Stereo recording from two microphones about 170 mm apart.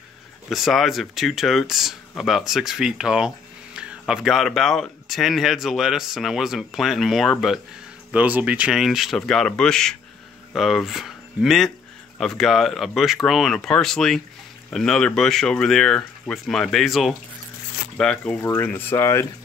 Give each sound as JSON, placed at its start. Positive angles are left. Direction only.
{"t": 0.5, "sound": "speech", "side_deg": 0}
{"t": 18.4, "sound": "speech", "side_deg": 15}